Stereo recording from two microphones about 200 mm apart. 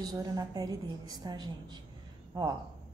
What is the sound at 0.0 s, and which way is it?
Speech, 20° right (ahead or behind).